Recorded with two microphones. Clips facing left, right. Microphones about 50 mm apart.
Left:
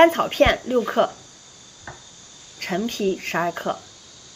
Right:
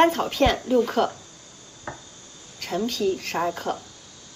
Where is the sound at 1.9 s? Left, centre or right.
Right.